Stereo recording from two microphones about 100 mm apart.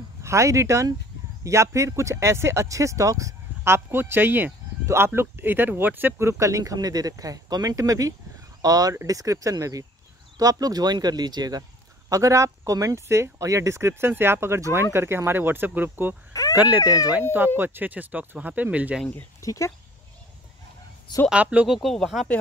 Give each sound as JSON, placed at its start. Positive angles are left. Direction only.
{"t": 0.2, "sound": "speech", "side_deg": -30}
{"t": 12.1, "sound": "speech", "side_deg": -35}
{"t": 19.4, "sound": "speech", "side_deg": 35}
{"t": 21.3, "sound": "speech", "side_deg": -10}